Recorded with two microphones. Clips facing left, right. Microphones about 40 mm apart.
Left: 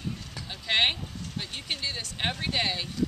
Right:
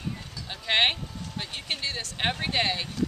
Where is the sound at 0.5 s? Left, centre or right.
Centre.